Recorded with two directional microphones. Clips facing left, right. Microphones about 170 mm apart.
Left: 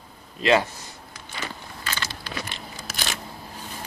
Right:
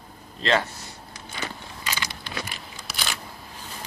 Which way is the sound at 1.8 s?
15° right (ahead or behind).